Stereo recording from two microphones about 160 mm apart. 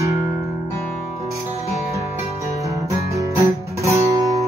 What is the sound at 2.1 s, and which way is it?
Guitar, 20° right (ahead or behind).